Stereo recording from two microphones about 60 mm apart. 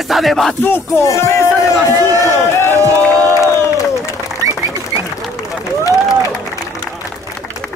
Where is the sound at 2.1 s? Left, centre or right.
Right.